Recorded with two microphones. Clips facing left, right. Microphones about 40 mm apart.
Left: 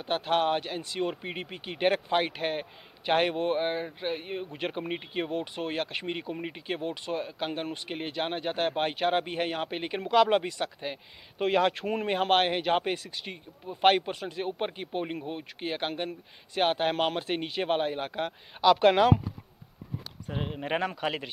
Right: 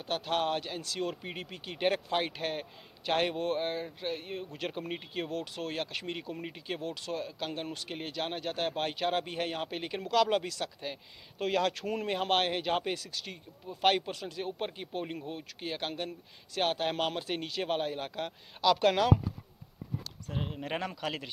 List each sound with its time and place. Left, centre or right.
0.0 s speech: left
20.2 s speech: centre